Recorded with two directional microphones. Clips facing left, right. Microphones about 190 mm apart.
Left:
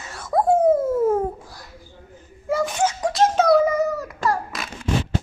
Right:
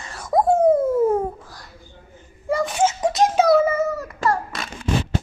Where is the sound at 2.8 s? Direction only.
25° right (ahead or behind).